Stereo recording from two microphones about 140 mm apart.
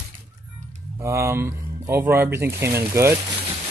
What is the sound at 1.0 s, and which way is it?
Speech, 20° right (ahead or behind).